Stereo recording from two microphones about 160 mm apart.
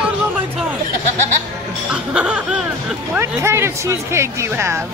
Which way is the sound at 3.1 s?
15° right (ahead or behind).